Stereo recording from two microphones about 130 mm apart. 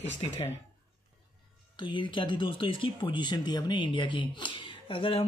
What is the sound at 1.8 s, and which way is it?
Speech, 40° left (ahead or behind).